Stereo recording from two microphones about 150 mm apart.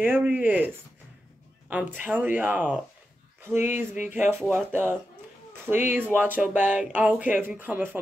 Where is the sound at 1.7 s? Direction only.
10° right (ahead or behind).